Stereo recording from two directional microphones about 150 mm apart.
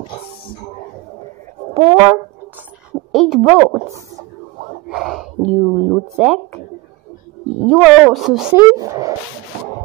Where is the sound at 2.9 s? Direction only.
10° right (ahead or behind).